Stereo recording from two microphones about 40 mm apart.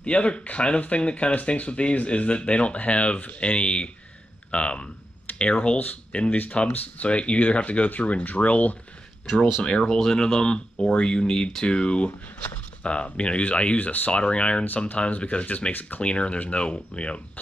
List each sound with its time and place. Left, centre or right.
0.0 s speech: left
6.5 s speech: left
9.6 s speech: left
13.7 s speech: left
14.1 s speech: left
16.0 s speech: left